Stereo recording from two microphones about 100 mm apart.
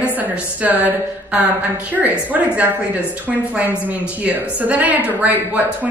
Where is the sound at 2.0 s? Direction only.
15° right (ahead or behind).